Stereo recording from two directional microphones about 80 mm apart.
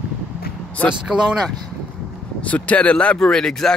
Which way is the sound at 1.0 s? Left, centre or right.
Centre.